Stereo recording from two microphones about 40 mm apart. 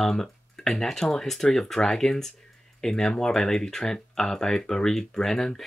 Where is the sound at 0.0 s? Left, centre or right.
Centre.